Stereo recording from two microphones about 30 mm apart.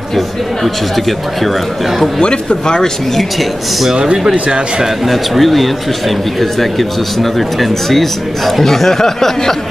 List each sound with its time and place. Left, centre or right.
2.2 s speech: left
3.2 s speech: centre
4.2 s speech: right
5.0 s speech: centre